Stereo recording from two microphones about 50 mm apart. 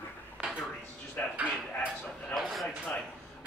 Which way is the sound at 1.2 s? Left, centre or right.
Left.